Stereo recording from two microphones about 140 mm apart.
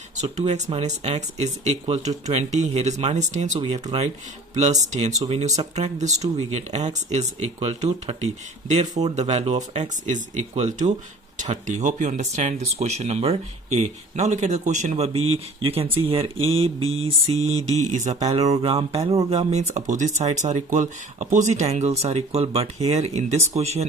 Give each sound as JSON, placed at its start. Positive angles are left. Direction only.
{"t": 0.2, "sound": "speech", "side_deg": -55}
{"t": 5.2, "sound": "speech", "side_deg": -45}
{"t": 9.8, "sound": "speech", "side_deg": -60}